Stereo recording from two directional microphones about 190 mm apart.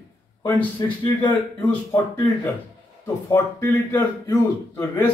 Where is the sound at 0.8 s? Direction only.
20° left (ahead or behind).